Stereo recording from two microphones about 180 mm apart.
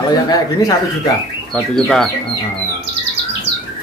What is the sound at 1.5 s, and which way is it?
Speech, 5° left (ahead or behind).